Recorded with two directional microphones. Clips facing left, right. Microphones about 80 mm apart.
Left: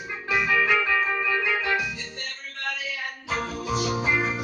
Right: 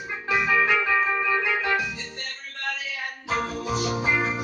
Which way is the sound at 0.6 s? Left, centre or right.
Centre.